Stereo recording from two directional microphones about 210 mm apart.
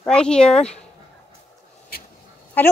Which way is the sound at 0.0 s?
5° left (ahead or behind).